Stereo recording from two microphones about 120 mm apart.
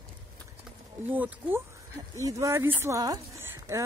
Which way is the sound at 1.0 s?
15° right (ahead or behind).